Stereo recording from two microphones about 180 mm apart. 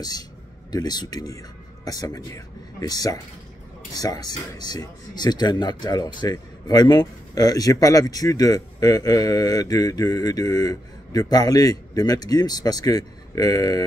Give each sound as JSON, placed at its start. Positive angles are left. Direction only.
{"t": 0.7, "sound": "speech", "side_deg": 20}